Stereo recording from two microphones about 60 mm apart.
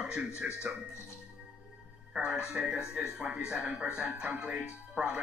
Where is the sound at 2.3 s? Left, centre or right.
Centre.